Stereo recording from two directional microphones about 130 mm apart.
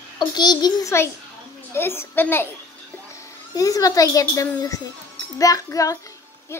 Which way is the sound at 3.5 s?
25° left (ahead or behind).